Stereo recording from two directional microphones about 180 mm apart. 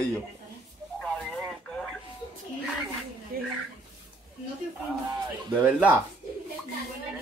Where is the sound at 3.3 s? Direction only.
55° right (ahead or behind).